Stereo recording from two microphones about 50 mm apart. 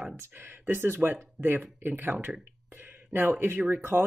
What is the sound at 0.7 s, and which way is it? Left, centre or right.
Speech, right.